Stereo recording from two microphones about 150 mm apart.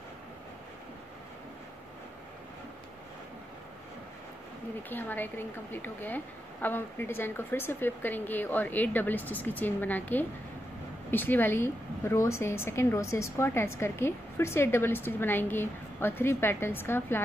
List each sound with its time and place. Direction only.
4.8 s a woman's voice: 15° left (ahead or behind)